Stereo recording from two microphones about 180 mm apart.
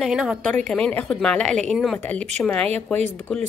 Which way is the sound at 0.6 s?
5° left (ahead or behind).